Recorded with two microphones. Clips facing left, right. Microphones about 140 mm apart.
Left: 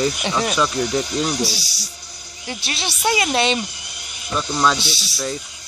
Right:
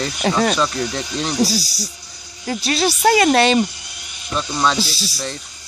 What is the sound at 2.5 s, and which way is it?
Speech, 45° right (ahead or behind).